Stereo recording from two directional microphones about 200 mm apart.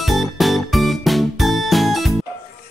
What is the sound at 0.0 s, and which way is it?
Music, centre (ahead or behind).